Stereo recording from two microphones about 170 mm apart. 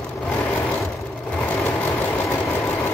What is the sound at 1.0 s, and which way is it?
Vehicle, 10° left (ahead or behind).